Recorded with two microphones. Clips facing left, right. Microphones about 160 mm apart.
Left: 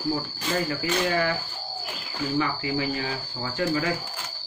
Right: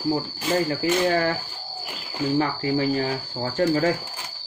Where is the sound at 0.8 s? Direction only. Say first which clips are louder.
Right 4 dB; 35° right (ahead or behind).